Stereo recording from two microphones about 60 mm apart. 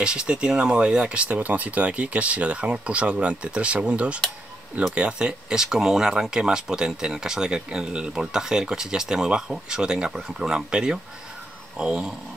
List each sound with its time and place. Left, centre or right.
0.0 s speech: centre